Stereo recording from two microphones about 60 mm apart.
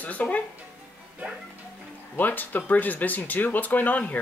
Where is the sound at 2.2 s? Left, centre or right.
Left.